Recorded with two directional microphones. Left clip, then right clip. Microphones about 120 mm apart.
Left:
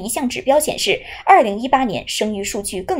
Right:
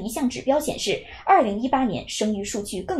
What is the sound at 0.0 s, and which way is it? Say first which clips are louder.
A woman's voice: left 5 dB; 25° left (ahead or behind).